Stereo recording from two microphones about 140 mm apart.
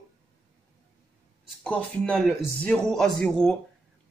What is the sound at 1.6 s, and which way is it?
Speech, 10° left (ahead or behind).